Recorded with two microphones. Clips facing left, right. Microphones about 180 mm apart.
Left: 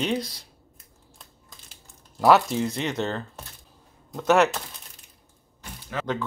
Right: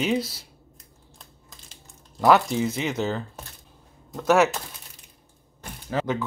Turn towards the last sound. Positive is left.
turn(degrees=-35)  # may be behind; listen again after turning